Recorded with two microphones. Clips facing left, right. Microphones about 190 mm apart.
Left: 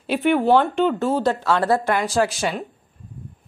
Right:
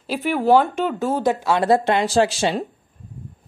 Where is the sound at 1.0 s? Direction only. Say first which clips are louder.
Even; 15° right (ahead or behind).